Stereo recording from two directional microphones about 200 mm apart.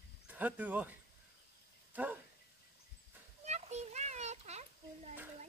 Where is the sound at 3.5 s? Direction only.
35° right (ahead or behind).